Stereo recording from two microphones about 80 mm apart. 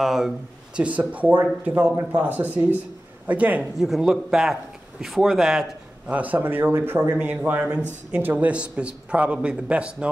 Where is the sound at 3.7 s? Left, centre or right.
Centre.